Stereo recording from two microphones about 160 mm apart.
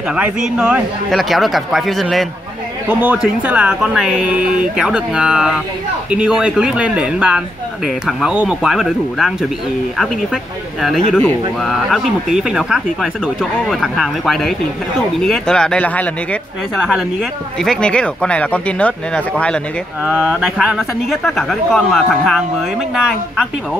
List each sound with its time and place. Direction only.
0.1 s speech: 5° right (ahead or behind)